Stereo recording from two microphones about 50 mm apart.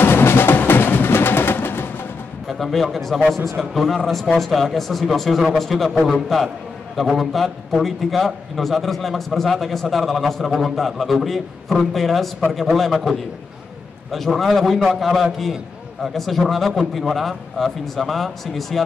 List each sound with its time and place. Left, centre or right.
0.0 s music: left
2.4 s a man's voice: centre
5.9 s a man's voice: centre
14.1 s a man's voice: centre